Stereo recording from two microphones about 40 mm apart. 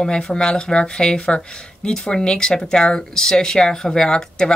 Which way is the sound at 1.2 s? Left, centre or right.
Left.